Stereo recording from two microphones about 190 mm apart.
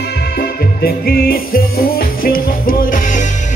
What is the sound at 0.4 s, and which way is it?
Music, 50° left (ahead or behind).